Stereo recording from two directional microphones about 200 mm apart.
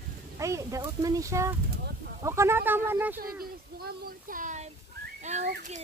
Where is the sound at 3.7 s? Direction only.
50° right (ahead or behind).